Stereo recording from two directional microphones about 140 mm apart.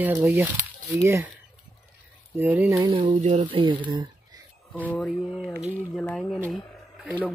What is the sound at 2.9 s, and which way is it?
Speech, 50° right (ahead or behind).